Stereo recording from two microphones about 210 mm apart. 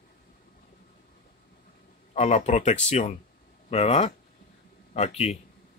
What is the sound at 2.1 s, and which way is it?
Speech, 30° left (ahead or behind).